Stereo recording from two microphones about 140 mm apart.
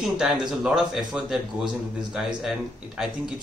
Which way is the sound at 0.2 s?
5° right (ahead or behind).